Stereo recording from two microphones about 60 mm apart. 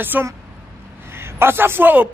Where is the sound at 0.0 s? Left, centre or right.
Right.